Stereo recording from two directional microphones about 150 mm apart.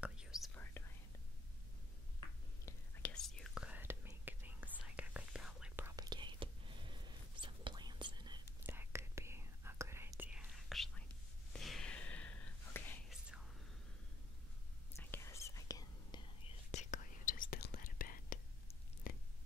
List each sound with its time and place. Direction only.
0.0 s whispering: 5° right (ahead or behind)
0.8 s whispering: 15° left (ahead or behind)
2.6 s whispering: 10° left (ahead or behind)
5.9 s whispering: 25° right (ahead or behind)
8.5 s whispering: 15° right (ahead or behind)
11.5 s gasp: centre (ahead or behind)
15.0 s whispering: 20° left (ahead or behind)
16.7 s whispering: 60° left (ahead or behind)
19.1 s a sound: 70° left (ahead or behind)